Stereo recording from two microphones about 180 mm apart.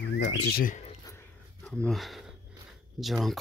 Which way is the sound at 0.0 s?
75° left (ahead or behind).